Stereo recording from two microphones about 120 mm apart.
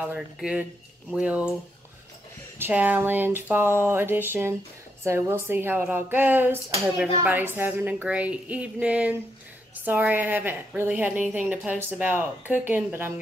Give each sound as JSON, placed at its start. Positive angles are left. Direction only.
{"t": 0.0, "sound": "a woman's voice", "side_deg": -10}
{"t": 2.6, "sound": "a woman's voice", "side_deg": -15}